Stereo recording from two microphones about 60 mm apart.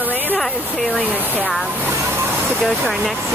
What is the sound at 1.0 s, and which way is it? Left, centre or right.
Speech, right.